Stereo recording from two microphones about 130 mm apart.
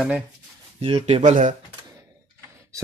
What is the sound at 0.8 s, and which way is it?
Speech, 45° right (ahead or behind).